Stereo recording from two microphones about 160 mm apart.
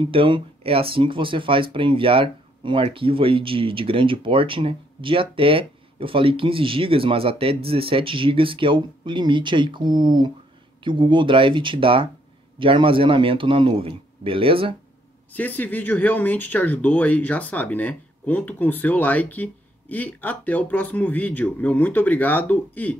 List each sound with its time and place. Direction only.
0.0 s speech: 30° right (ahead or behind)
15.3 s speech: 10° left (ahead or behind)